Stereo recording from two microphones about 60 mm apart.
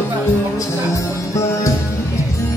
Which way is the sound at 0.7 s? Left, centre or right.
Left.